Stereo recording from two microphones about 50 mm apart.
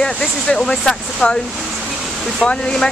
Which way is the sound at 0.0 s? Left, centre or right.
Centre.